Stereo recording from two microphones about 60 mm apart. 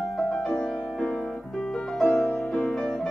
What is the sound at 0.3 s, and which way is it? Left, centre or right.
Music, centre.